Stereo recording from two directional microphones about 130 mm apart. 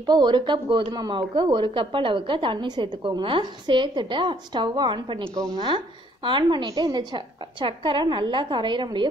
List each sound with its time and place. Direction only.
0.0 s a woman's voice: 35° right (ahead or behind)